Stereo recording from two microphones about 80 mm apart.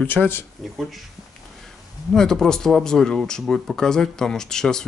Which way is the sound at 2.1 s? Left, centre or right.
Centre.